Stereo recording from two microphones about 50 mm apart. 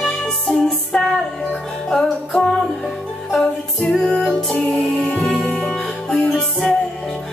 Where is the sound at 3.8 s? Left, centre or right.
Centre.